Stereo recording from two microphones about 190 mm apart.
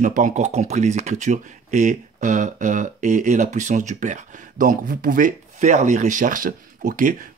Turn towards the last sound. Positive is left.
turn(degrees=-45)  # may be behind; listen again after turning